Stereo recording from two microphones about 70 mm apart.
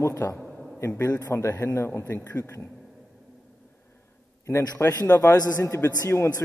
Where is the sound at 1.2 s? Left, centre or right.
Left.